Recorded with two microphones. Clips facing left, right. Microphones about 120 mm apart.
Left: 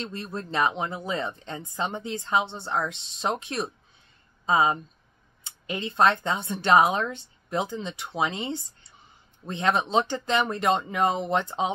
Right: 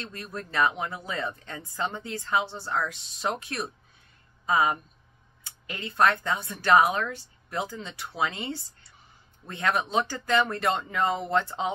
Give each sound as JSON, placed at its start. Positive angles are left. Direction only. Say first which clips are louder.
{"t": 0.0, "sound": "speech", "louder": "left 4 dB", "side_deg": 25}